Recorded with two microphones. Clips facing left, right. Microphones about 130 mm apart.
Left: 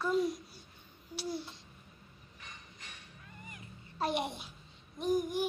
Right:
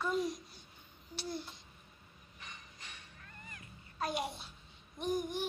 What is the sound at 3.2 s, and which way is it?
Music, 10° left (ahead or behind).